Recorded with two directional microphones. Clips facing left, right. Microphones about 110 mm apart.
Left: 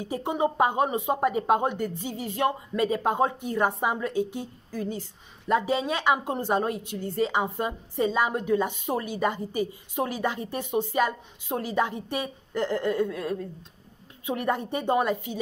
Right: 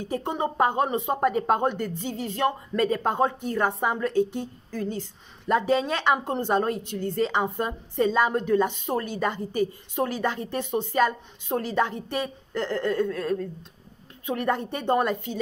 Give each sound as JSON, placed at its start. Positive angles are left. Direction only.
{"t": 0.0, "sound": "a woman's voice", "side_deg": 10}